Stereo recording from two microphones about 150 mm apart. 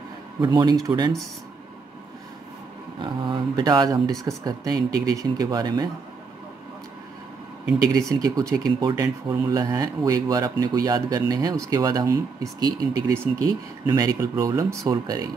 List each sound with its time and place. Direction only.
0.4 s speech: 30° right (ahead or behind)
3.0 s speech: 30° right (ahead or behind)
8.1 s speech: 25° right (ahead or behind)